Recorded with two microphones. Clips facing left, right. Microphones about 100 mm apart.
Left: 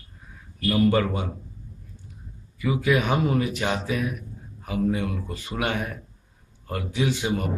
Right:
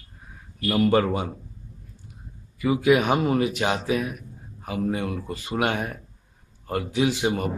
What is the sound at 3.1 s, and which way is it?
Speech, 35° right (ahead or behind).